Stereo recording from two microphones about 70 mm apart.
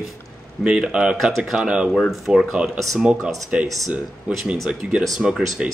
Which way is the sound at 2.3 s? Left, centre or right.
Centre.